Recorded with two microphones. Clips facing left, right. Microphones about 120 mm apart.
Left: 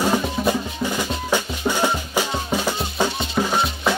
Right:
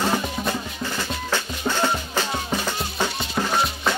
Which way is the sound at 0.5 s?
15° left (ahead or behind).